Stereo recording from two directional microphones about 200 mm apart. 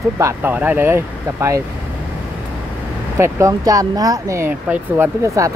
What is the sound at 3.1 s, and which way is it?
Speech, 15° right (ahead or behind).